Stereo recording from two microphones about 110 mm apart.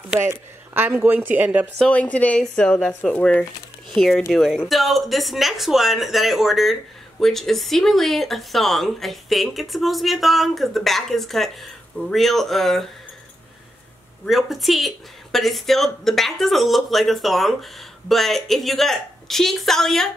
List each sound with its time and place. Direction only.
0.7 s speech: 20° right (ahead or behind)
1.8 s speech: 10° left (ahead or behind)
4.3 s speech: centre (ahead or behind)
14.2 s speech: centre (ahead or behind)